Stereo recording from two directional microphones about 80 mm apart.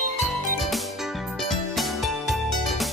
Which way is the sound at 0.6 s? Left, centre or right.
Centre.